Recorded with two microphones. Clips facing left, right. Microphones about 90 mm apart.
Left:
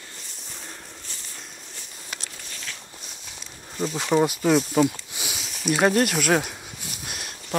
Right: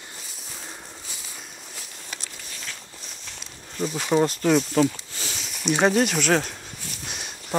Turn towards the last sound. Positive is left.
turn(degrees=5)  # may be behind; listen again after turning